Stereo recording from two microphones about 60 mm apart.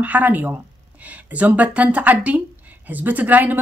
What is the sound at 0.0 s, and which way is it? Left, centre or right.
A woman's voice, right.